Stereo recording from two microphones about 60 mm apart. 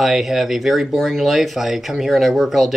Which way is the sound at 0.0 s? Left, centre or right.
Centre.